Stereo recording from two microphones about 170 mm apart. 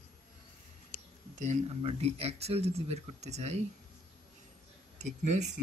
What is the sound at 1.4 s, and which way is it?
Speech, 40° right (ahead or behind).